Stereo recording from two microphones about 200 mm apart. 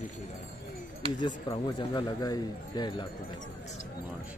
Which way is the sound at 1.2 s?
25° left (ahead or behind).